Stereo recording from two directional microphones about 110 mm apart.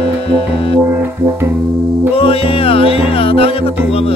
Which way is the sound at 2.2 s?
60° left (ahead or behind).